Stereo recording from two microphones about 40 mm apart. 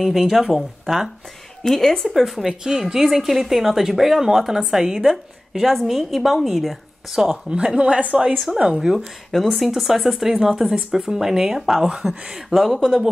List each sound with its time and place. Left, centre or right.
0.0 s a woman's voice: centre
1.6 s a woman's voice: centre
2.0 s a woman's voice: centre
5.1 s a woman's voice: centre
7.6 s a woman's voice: right
9.3 s a woman's voice: centre
10.3 s a woman's voice: right